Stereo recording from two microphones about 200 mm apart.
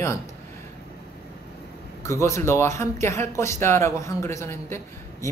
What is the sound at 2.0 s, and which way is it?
Speech, 15° left (ahead or behind).